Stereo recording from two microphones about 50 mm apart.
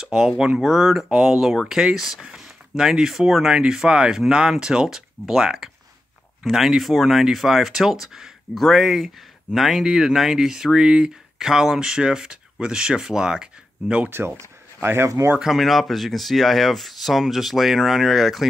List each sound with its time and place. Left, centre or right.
0.0 s speech: centre
14.0 s speech: right
14.3 s speech: right
15.0 s speech: right
15.4 s speech: centre